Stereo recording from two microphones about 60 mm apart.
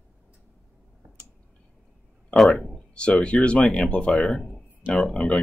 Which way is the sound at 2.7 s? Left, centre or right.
Centre.